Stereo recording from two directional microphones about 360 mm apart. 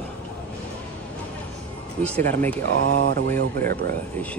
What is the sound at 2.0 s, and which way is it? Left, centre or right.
Speech, centre.